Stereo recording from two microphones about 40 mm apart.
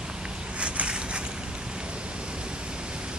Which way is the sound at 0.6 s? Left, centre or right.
Right.